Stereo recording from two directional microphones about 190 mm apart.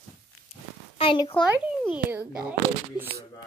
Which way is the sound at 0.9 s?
25° left (ahead or behind).